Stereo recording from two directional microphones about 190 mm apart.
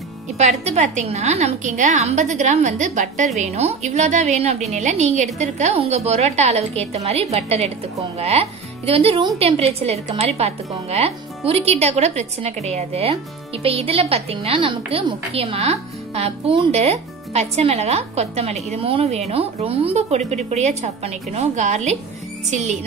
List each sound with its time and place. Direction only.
0.4 s speech: 35° right (ahead or behind)